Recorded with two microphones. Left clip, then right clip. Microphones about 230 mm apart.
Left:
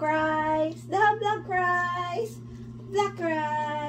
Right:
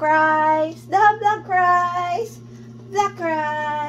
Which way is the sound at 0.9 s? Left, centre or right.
Centre.